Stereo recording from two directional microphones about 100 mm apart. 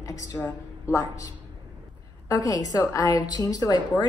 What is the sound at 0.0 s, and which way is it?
A woman's voice, 35° left (ahead or behind).